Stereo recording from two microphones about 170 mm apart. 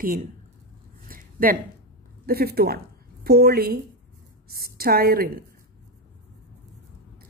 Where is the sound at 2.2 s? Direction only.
65° right (ahead or behind).